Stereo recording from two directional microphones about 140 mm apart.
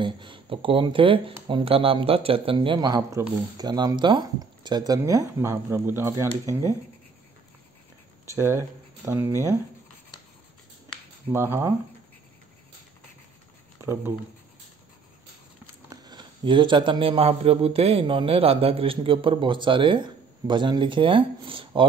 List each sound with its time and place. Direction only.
0.0 s speech: 35° right (ahead or behind); by 6.7 s 20° right (ahead or behind)
8.4 s speech: 20° right (ahead or behind)
11.3 s speech: 15° right (ahead or behind)
13.7 s speech: 20° right (ahead or behind)
15.9 s speech: 30° right (ahead or behind)